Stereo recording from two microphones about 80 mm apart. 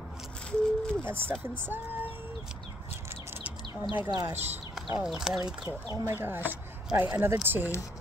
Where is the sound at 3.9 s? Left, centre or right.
Left.